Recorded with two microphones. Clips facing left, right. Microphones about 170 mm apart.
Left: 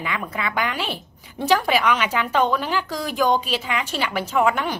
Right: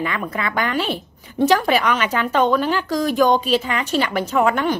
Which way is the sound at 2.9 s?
40° right (ahead or behind).